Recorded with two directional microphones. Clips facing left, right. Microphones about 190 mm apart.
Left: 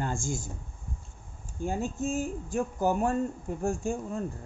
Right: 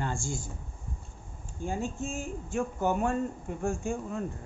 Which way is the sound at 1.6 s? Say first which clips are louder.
Left 3 dB; 45° left (ahead or behind).